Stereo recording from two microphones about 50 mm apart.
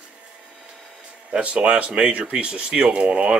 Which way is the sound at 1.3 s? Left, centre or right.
Right.